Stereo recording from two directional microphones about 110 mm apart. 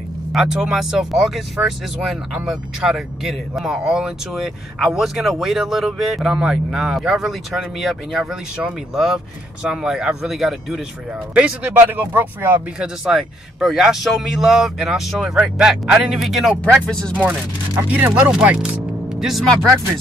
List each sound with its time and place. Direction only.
0.3 s speech: 5° right (ahead or behind)
12.7 s speech: 5° right (ahead or behind)
16.8 s speech: 10° left (ahead or behind)
17.2 s speech: 15° right (ahead or behind); by 19.7 s 5° left (ahead or behind)